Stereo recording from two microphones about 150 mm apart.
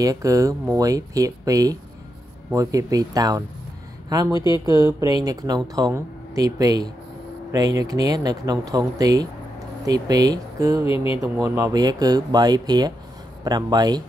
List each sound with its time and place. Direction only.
0.0 s speech: 25° right (ahead or behind)
4.3 s speech: 30° left (ahead or behind)
5.1 s speech: 25° right (ahead or behind)
10.8 s speech: 35° left (ahead or behind)
11.3 s speech: 20° right (ahead or behind)